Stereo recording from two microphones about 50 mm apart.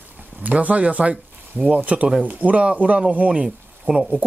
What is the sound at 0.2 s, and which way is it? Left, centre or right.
Speech, right.